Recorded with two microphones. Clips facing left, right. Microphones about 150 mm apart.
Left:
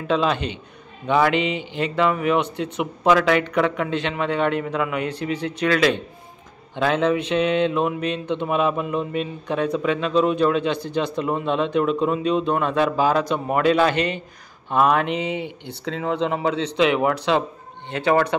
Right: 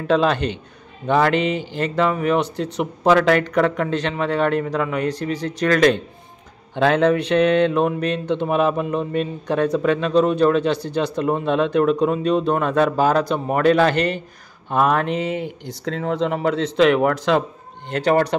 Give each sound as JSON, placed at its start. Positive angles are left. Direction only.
{"t": 0.0, "sound": "speech", "side_deg": -45}
{"t": 6.8, "sound": "speech", "side_deg": -55}